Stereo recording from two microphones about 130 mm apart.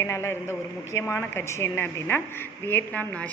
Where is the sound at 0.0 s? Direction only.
20° left (ahead or behind).